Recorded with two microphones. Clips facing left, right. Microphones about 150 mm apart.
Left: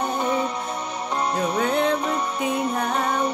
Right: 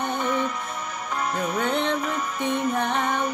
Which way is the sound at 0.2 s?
30° left (ahead or behind).